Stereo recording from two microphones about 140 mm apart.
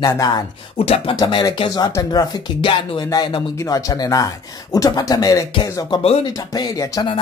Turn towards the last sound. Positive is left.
turn(degrees=25)  # may be behind; listen again after turning